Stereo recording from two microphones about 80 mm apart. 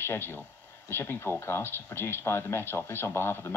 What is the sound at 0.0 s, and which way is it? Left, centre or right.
Speech, left.